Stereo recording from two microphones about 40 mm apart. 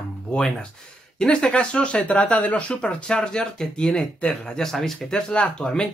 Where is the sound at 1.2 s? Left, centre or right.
Left.